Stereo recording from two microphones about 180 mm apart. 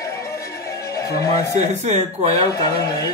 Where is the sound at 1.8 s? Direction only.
40° right (ahead or behind).